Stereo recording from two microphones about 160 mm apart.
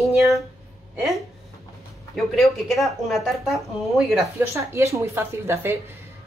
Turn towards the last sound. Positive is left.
turn(degrees=-15)  # may be behind; listen again after turning